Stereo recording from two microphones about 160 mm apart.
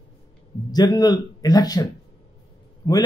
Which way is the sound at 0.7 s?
25° left (ahead or behind).